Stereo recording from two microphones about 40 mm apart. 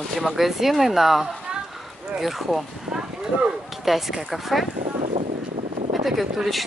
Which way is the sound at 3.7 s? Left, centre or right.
Centre.